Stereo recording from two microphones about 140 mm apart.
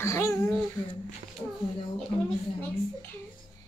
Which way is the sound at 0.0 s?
20° left (ahead or behind).